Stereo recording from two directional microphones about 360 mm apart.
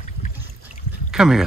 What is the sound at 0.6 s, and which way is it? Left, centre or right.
Pour, centre.